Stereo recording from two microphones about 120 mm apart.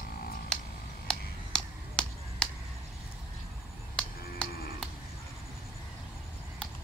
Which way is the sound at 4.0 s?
5° left (ahead or behind).